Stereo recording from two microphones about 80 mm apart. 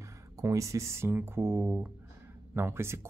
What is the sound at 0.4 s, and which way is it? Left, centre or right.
Speech, right.